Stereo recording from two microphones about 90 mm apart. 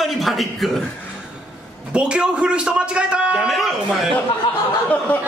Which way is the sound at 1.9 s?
10° right (ahead or behind).